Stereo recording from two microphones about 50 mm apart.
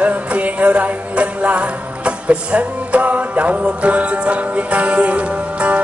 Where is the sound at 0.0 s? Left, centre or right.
Right.